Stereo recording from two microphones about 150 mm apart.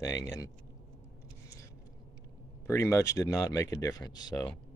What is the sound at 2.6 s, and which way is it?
Speech, 20° left (ahead or behind).